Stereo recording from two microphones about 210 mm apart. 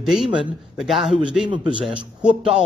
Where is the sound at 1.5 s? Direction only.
20° right (ahead or behind).